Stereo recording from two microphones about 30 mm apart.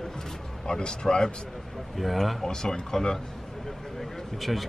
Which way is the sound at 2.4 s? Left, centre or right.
Left.